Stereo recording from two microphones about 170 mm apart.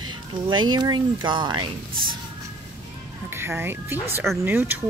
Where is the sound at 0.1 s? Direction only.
25° right (ahead or behind).